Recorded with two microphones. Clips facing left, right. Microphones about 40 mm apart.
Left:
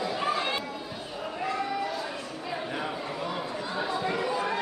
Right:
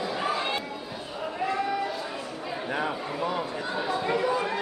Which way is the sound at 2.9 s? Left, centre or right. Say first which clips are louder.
Right 3 dB; centre.